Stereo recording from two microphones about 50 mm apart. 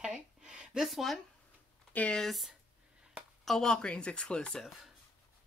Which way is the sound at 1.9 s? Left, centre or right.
Left.